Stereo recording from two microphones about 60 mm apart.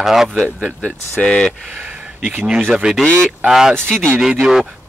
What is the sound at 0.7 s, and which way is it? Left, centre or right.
Speech, centre.